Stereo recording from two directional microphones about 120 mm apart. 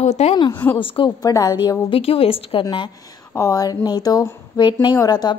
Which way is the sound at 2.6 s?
40° left (ahead or behind).